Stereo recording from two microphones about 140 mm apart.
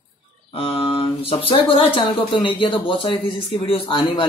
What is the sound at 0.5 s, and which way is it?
Speech, 40° left (ahead or behind).